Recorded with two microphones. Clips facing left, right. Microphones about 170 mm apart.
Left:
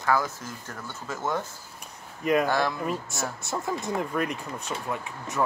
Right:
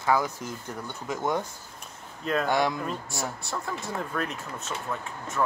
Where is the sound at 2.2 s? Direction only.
10° left (ahead or behind).